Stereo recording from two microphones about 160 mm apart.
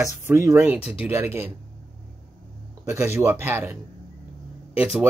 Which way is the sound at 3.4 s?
15° right (ahead or behind).